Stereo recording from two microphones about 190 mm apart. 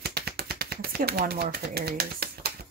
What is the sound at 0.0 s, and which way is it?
Typewriter, 55° right (ahead or behind).